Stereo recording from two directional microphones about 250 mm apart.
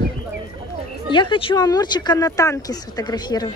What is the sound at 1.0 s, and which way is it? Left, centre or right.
Speech, centre.